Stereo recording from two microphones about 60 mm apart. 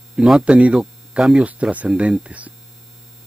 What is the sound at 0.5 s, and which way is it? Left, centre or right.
Speech, right.